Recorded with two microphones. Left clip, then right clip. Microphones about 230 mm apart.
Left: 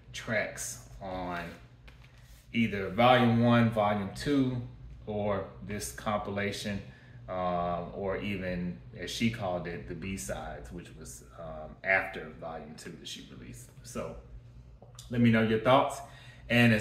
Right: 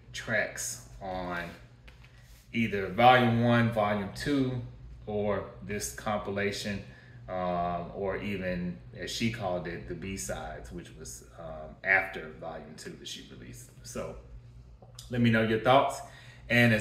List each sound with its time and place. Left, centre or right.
0.1 s speech: centre
2.5 s speech: centre
15.0 s speech: centre